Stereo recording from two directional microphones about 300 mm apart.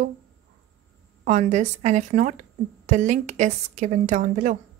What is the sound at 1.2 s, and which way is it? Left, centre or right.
A woman's voice, right.